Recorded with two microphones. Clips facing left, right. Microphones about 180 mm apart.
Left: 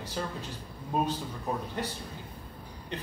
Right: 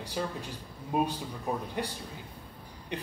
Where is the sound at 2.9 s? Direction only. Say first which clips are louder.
Right 1 dB; 15° right (ahead or behind).